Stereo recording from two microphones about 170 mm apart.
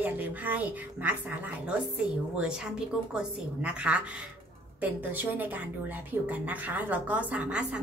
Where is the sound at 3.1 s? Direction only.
5° right (ahead or behind).